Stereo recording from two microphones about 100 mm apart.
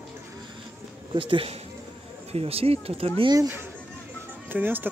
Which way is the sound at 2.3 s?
80° right.